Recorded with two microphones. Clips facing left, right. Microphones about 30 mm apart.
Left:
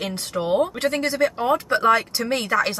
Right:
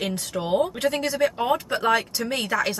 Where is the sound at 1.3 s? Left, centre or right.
Right.